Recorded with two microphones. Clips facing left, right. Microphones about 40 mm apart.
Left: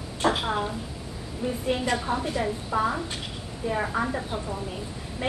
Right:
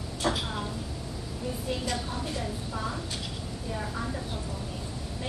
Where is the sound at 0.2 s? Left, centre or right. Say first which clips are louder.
Left 6 dB; left.